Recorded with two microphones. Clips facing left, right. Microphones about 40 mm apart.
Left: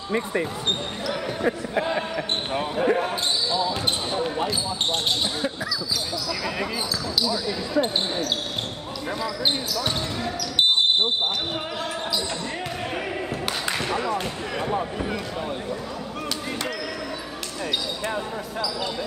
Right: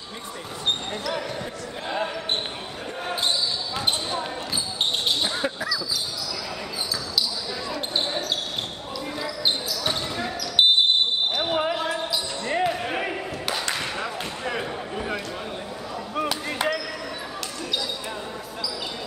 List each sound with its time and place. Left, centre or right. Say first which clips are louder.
0.7 s speech: even; centre
2.5 s speech: left 11 dB; left
5.2 s speech: even; centre
12.4 s basketball bounce: right 5 dB; centre
13.5 s a sound: left 1 dB; centre
16.2 s a sound: right 5 dB; centre